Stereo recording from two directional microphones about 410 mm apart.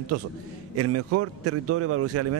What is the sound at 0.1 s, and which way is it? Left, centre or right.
A man's voice, right.